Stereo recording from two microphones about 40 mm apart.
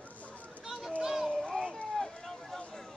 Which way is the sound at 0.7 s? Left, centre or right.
Centre.